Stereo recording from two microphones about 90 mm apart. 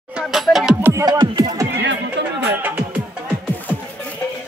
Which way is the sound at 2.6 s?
20° right (ahead or behind).